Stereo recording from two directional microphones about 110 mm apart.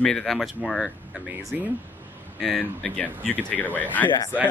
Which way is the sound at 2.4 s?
5° left (ahead or behind).